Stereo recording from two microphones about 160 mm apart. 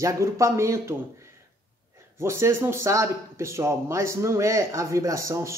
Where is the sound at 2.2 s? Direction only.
15° right (ahead or behind).